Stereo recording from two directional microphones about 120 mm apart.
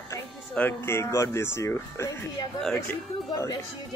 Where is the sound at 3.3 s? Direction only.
30° left (ahead or behind).